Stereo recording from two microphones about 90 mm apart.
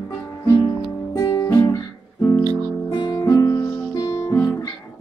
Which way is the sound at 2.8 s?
50° left (ahead or behind).